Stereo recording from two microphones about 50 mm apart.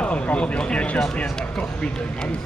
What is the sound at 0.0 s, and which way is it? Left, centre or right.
Speech, left.